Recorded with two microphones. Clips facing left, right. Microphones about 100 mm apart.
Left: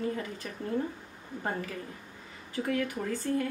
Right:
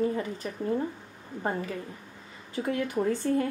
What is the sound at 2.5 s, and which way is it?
Speech, 25° right (ahead or behind).